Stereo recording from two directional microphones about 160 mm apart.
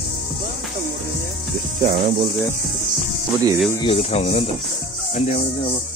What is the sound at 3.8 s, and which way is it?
Speech, 40° left (ahead or behind).